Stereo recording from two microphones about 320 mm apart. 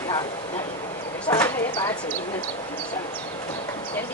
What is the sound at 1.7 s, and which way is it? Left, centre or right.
Speech, centre.